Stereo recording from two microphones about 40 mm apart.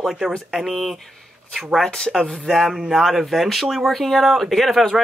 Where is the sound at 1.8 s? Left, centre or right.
Centre.